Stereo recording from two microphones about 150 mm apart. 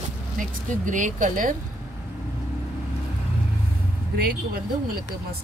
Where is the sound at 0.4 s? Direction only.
60° right (ahead or behind).